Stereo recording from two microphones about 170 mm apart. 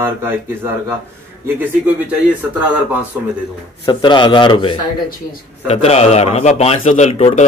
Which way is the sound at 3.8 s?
30° left (ahead or behind).